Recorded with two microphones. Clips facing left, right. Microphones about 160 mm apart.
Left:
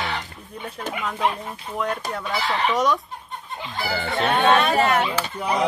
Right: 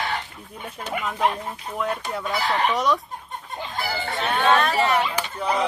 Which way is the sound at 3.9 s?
65° left (ahead or behind).